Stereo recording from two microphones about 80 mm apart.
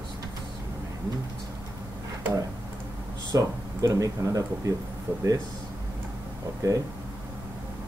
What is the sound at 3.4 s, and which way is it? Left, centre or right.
Speech, right.